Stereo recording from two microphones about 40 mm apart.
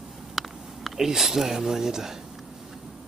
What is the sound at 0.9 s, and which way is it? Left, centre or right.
Speech, centre.